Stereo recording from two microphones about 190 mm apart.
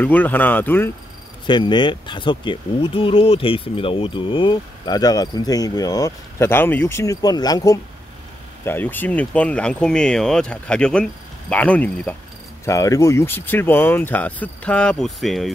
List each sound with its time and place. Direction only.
0.0 s speech: 10° left (ahead or behind)
1.4 s speech: 25° left (ahead or behind); by 15.5 s centre (ahead or behind)